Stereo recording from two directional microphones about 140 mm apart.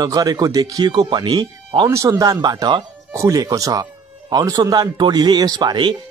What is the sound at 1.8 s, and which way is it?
Speech, 25° right (ahead or behind).